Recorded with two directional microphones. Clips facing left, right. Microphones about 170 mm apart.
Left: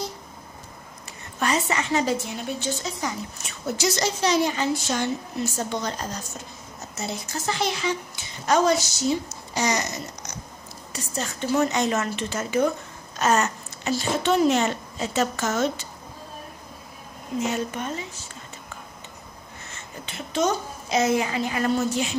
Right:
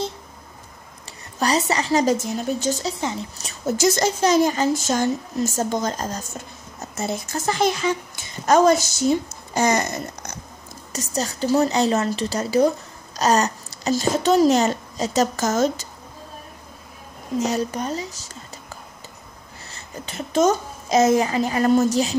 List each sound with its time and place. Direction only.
1.4 s a woman's voice: 35° right (ahead or behind)
3.0 s speech: 25° right (ahead or behind)
3.6 s speech: 45° right (ahead or behind)
10.9 s a woman's voice: 40° right (ahead or behind)
17.4 s a woman's voice: 40° right (ahead or behind)
19.7 s a child's voice: 40° right (ahead or behind)